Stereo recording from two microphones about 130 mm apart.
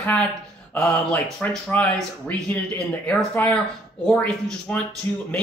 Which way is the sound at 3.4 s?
10° left (ahead or behind).